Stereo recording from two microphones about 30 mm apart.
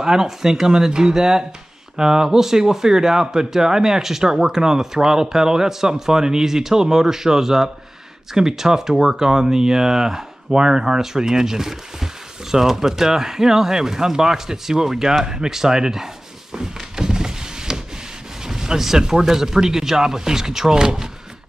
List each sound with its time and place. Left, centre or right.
0.0 s speech: centre
16.9 s power windows: right
18.4 s a sound: centre
19.2 s speech: centre